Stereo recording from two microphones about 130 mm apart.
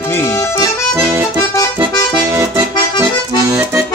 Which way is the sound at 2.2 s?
25° right (ahead or behind).